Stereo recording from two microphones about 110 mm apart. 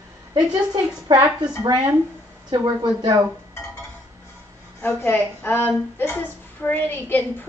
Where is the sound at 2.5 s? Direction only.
40° right (ahead or behind).